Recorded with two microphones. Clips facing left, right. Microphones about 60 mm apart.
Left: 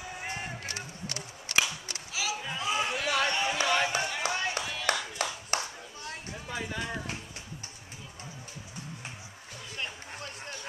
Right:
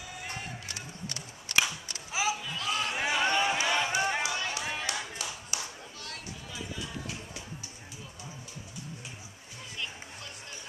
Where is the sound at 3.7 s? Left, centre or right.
Left.